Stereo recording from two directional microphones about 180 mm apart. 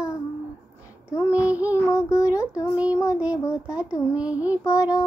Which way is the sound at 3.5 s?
20° left (ahead or behind).